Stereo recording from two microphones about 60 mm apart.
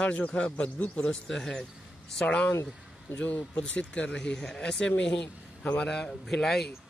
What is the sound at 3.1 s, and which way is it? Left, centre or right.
Speech, left.